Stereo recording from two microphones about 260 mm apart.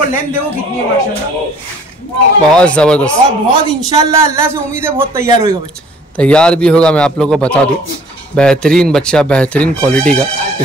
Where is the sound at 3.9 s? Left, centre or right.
Centre.